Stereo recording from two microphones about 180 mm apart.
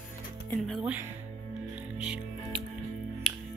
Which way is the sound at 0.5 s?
Centre (ahead or behind).